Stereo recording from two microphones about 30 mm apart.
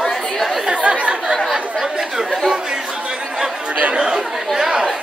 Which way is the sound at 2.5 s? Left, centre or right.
Right.